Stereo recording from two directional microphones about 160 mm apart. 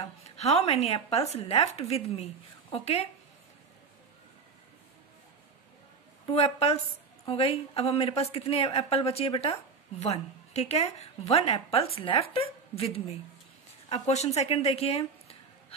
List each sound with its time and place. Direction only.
0.4 s a woman's voice: 40° left (ahead or behind)
6.2 s a woman's voice: 40° left (ahead or behind)